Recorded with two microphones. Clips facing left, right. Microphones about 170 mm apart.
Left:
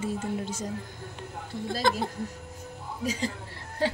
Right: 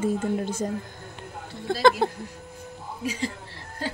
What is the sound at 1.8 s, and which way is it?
Speech, 70° right (ahead or behind).